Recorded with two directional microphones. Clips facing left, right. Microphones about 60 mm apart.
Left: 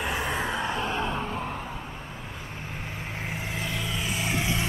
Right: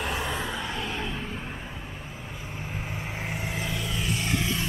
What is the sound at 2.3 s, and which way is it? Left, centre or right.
Vehicle, centre.